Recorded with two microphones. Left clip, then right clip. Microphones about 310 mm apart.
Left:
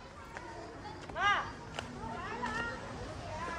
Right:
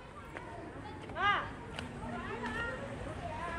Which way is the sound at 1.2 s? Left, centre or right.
Left.